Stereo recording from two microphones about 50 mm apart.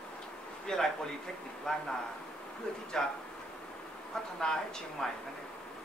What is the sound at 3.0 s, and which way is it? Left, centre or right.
Speech, centre.